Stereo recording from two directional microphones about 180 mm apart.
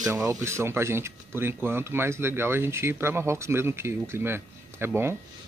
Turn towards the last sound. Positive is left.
turn(degrees=-10)  # may be behind; listen again after turning